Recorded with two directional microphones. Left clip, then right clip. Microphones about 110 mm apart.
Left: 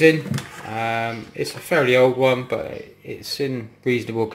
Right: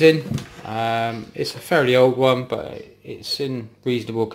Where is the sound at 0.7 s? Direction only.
25° right (ahead or behind).